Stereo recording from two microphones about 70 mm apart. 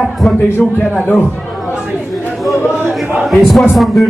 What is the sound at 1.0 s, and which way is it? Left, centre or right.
Speech, left.